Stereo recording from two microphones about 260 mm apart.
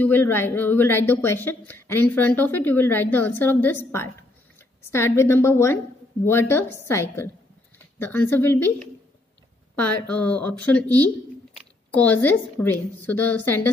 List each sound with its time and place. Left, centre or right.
0.0 s a woman's voice: centre